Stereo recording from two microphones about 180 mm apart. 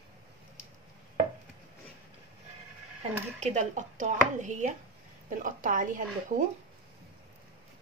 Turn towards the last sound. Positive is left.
turn(degrees=-45)  # may be behind; listen again after turning